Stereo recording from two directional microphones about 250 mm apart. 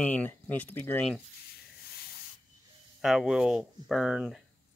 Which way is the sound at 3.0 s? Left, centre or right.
Centre.